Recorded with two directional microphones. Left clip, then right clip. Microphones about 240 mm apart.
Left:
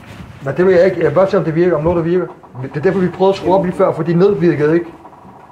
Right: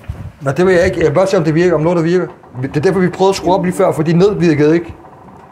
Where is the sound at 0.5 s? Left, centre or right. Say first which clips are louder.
Even; right.